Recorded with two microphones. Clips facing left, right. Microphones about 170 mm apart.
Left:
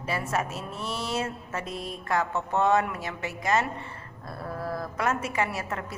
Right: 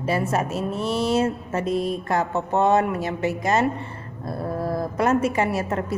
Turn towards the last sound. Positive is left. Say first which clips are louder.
# right 7 dB
turn(degrees=-35)  # may be behind; listen again after turning